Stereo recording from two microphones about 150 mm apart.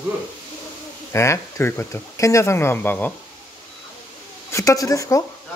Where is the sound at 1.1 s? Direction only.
20° left (ahead or behind).